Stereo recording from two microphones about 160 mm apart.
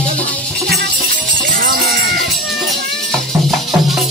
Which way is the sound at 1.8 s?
Centre (ahead or behind).